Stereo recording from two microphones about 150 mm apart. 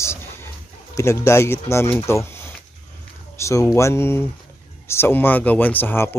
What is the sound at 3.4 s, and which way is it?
Speech, 20° left (ahead or behind).